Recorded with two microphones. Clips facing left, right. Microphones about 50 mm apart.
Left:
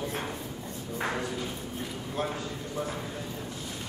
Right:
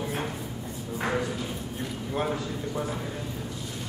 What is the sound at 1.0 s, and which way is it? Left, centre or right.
Ping, centre.